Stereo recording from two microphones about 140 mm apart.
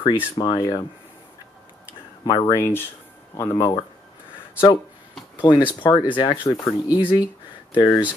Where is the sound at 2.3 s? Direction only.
30° left (ahead or behind).